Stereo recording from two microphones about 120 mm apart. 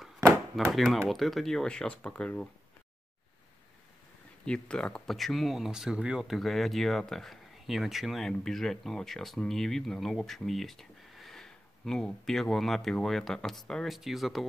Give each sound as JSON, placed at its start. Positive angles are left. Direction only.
{"t": 0.2, "sound": "chop", "side_deg": -25}
{"t": 0.7, "sound": "speech", "side_deg": 0}
{"t": 4.5, "sound": "speech", "side_deg": 5}